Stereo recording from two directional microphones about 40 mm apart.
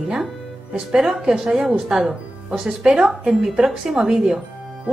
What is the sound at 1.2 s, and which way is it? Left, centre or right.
A woman's voice, centre.